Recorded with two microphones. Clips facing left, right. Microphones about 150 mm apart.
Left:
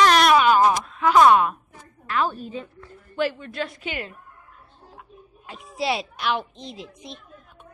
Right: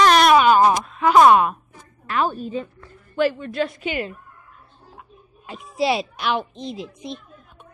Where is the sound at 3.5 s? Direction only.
15° right (ahead or behind).